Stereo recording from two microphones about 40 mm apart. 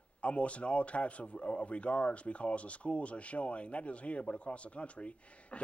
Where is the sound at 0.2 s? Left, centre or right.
Left.